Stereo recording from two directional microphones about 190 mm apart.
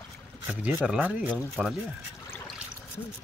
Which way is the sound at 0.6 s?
5° right (ahead or behind).